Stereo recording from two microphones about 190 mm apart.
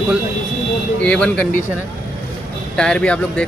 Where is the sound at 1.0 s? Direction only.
5° left (ahead or behind).